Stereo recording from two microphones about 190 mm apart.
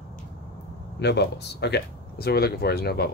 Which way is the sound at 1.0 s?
60° left (ahead or behind).